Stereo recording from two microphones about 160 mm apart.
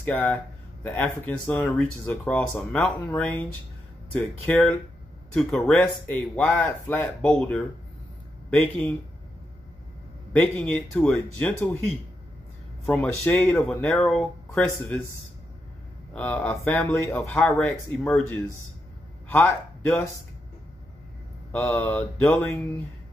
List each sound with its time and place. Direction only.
0.0 s speech: 10° left (ahead or behind)
10.4 s speech: 10° left (ahead or behind)
12.8 s speech: 10° left (ahead or behind)
16.1 s speech: 10° left (ahead or behind)
17.2 s speech: centre (ahead or behind)
19.2 s a man's voice: 15° left (ahead or behind)
21.5 s speech: 10° left (ahead or behind)